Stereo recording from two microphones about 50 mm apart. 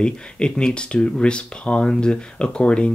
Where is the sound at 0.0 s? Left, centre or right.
Centre.